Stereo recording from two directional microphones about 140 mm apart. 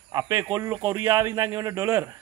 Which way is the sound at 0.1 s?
25° right (ahead or behind).